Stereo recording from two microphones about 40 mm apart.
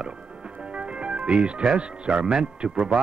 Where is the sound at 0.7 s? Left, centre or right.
Right.